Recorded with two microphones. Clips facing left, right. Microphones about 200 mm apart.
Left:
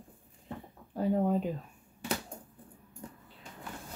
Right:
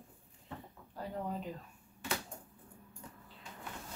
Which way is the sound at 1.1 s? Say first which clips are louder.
Left 11 dB; 55° left (ahead or behind).